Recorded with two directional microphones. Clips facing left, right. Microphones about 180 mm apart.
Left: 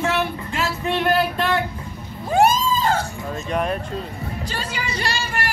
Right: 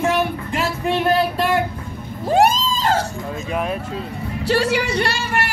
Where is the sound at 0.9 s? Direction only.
5° right (ahead or behind).